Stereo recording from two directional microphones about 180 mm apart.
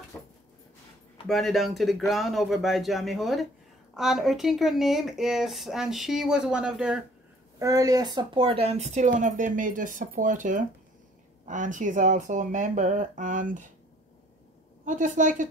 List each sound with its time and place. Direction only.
0.1 s a sound: 15° left (ahead or behind)
1.2 s speech: centre (ahead or behind)
7.5 s speech: 20° right (ahead or behind); by 13.7 s 45° right (ahead or behind)
14.9 s speech: 45° right (ahead or behind)